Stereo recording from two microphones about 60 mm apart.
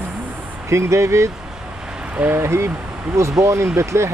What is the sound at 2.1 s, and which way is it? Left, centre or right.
Speech, right.